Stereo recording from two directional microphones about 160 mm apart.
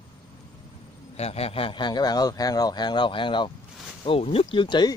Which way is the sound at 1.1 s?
40° left (ahead or behind).